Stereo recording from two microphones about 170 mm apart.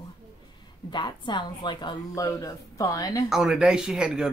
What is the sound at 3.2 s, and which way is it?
Speech, 5° right (ahead or behind).